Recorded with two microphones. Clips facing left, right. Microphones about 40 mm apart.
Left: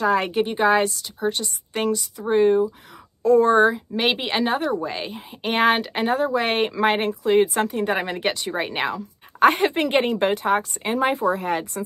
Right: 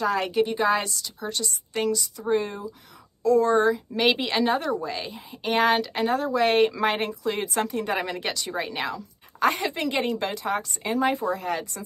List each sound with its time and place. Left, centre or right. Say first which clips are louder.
0.1 s a woman's voice: left 3 dB; left
3.7 s a woman's voice: even; left
4.8 s speech: left 3 dB; left